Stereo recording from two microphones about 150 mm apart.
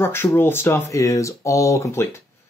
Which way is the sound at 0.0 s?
15° left (ahead or behind).